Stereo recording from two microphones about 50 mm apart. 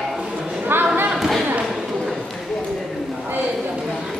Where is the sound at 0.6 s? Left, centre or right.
Right.